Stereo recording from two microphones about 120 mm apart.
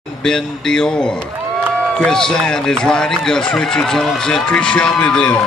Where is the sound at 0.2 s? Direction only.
5° left (ahead or behind).